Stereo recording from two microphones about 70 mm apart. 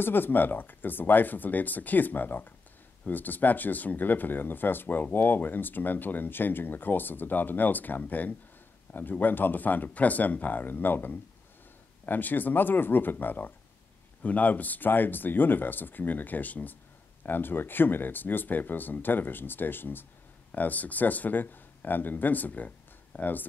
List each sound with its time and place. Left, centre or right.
0.0 s speech: left